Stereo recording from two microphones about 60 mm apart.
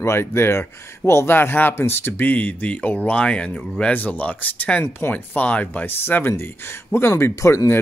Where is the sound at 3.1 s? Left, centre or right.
Centre.